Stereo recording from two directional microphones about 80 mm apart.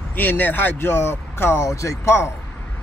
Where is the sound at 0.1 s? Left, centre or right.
Left.